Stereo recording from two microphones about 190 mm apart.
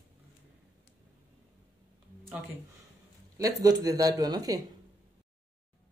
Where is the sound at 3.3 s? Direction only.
20° right (ahead or behind).